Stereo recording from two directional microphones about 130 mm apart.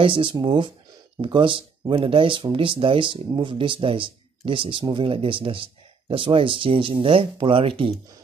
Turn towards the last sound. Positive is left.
turn(degrees=-45)  # may be behind; listen again after turning